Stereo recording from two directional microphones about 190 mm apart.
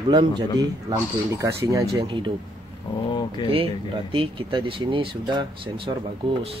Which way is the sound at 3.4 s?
30° right (ahead or behind).